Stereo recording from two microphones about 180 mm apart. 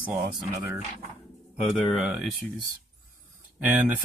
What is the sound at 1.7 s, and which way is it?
Speech, 5° right (ahead or behind).